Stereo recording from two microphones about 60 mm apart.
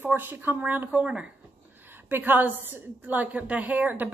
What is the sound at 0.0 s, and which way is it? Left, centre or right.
Speech, right.